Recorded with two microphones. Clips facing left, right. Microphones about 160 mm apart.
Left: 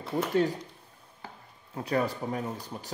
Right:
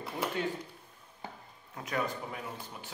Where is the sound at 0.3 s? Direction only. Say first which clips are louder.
Left 10 dB; 40° left (ahead or behind).